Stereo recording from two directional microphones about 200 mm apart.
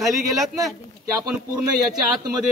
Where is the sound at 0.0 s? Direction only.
Centre (ahead or behind).